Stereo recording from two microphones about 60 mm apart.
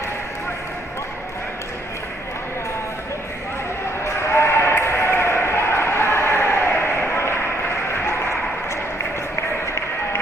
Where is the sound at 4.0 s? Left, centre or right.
Left.